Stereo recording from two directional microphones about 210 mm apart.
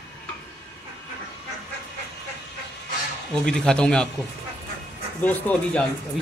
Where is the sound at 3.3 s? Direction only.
5° left (ahead or behind).